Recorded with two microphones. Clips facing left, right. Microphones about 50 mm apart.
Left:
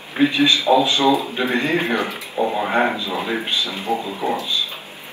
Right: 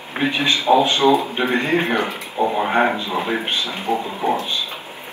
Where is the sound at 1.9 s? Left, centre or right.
Right.